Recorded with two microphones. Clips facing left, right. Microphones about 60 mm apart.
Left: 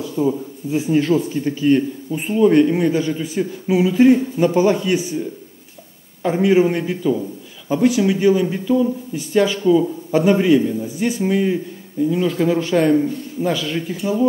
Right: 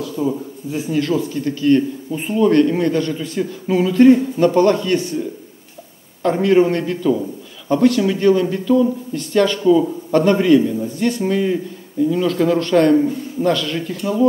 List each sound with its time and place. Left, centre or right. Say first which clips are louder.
0.0 s a sound: left 1 dB; centre
0.7 s a man's voice: left 3 dB; left
6.2 s a man's voice: right 1 dB; centre